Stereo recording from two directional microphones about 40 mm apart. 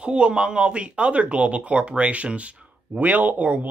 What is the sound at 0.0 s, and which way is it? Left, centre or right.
Speech, right.